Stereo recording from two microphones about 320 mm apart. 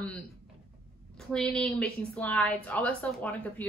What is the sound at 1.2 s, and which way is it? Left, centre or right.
A woman's voice, centre.